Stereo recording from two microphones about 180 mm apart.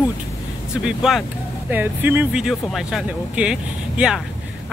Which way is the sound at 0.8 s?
Centre (ahead or behind).